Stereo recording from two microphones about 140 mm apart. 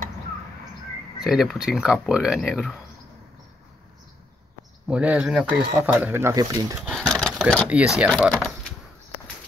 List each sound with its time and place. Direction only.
1.2 s speech: centre (ahead or behind)
4.8 s speech: 10° right (ahead or behind)
6.3 s speech: 25° right (ahead or behind)
6.9 s vehicle: centre (ahead or behind)
7.7 s speech: 5° right (ahead or behind)